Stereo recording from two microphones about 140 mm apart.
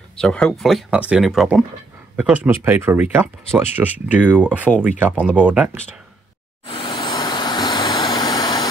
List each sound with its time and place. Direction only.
0.2 s speech: 5° left (ahead or behind); by 5.7 s 10° right (ahead or behind)
6.6 s vehicle: 35° left (ahead or behind)